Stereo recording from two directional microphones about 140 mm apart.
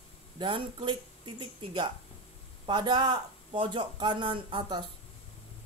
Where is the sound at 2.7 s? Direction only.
35° right (ahead or behind).